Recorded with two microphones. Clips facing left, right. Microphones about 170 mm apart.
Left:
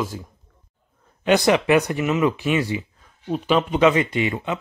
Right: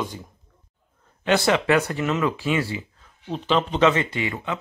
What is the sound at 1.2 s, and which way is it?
A man's voice, 15° left (ahead or behind).